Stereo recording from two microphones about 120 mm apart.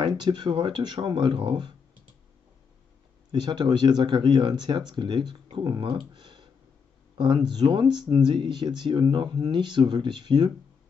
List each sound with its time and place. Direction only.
0.0 s speech: 40° right (ahead or behind)
3.3 s speech: 40° right (ahead or behind)